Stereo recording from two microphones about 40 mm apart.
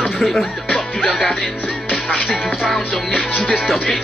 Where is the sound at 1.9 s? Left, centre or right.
Centre.